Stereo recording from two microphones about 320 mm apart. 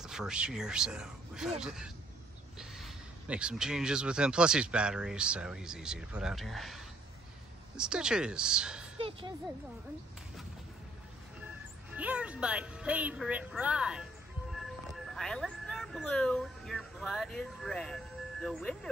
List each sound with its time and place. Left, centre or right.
0.0 s speech: centre
8.9 s speech: centre
11.9 s speech: centre
15.1 s speech: centre